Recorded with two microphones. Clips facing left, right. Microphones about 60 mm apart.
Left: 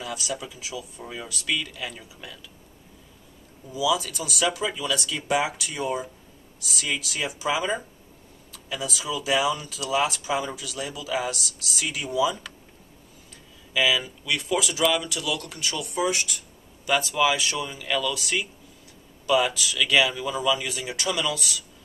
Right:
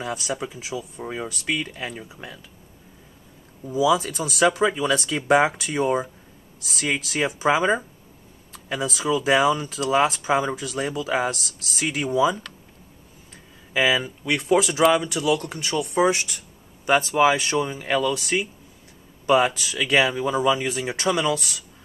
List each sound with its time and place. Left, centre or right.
0.0 s speech: right
3.7 s speech: right
13.7 s speech: right